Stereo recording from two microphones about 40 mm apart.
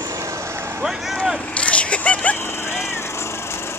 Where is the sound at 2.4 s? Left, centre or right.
Left.